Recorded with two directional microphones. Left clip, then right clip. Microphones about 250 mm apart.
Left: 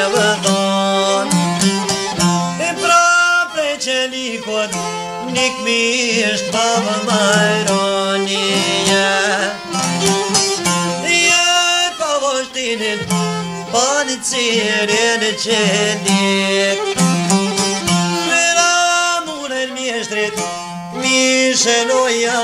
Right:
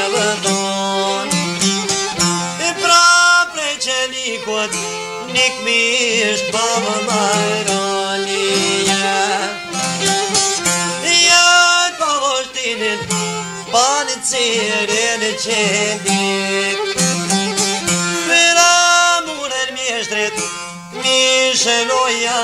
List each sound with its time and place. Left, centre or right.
2.6 s music: centre
5.3 s music: centre
11.1 s male singing: centre
13.7 s music: centre
18.3 s music: centre
21.0 s music: centre